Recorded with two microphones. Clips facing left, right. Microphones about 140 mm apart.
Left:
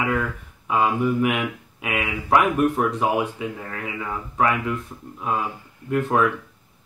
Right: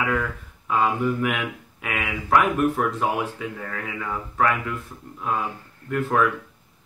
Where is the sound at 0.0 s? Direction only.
15° left (ahead or behind).